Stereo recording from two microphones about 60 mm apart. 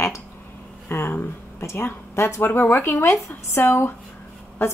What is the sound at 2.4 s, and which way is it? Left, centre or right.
A woman's voice, left.